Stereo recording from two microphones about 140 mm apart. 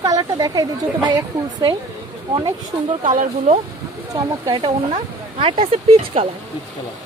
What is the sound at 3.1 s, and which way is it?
Speech, 65° right (ahead or behind).